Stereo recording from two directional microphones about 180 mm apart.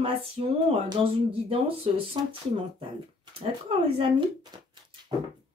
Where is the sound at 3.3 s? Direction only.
30° right (ahead or behind).